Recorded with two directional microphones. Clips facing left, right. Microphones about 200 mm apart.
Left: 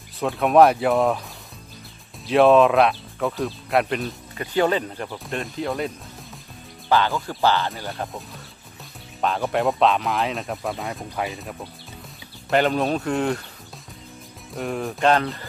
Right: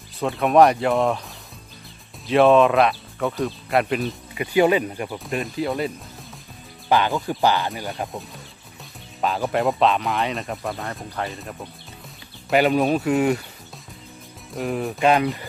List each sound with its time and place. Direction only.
0.2 s speech: centre (ahead or behind)
2.2 s speech: centre (ahead or behind)
6.9 s speech: 15° right (ahead or behind)
9.2 s speech: centre (ahead or behind)
14.5 s speech: centre (ahead or behind)